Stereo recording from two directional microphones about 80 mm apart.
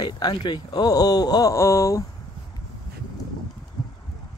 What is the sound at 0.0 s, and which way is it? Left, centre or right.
Speech, left.